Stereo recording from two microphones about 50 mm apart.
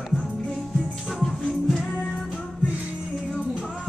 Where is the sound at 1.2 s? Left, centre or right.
Centre.